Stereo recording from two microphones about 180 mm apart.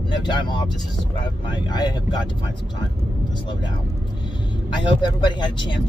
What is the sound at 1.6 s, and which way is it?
Speech, 25° left (ahead or behind).